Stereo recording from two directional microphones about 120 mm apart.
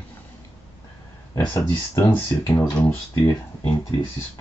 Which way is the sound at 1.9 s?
20° left (ahead or behind).